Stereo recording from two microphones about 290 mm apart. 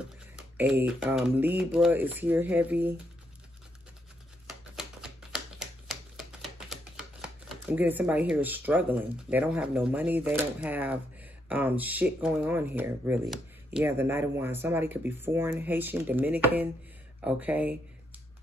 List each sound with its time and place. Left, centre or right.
0.6 s speech: centre
4.5 s typewriter: centre
7.4 s speech: centre